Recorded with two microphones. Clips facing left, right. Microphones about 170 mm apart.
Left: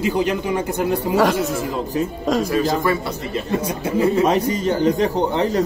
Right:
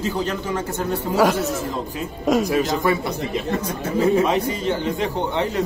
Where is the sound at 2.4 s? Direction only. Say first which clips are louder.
Left 1 dB; 20° right (ahead or behind).